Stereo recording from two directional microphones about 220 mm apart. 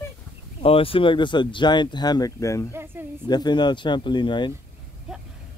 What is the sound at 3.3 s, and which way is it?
Speech, 20° left (ahead or behind).